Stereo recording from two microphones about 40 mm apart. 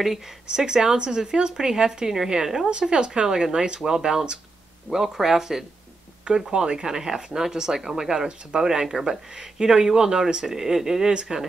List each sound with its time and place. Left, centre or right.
0.0 s speech: centre